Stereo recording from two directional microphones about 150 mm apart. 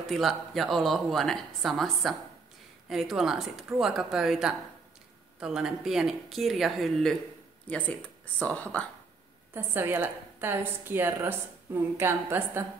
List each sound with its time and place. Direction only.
0.1 s speech: centre (ahead or behind)
9.5 s a woman's voice: 15° right (ahead or behind)